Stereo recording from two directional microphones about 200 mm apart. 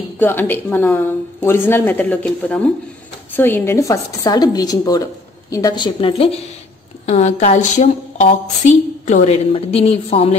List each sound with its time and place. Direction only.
0.2 s a woman's voice: 10° left (ahead or behind); by 10.3 s 30° left (ahead or behind)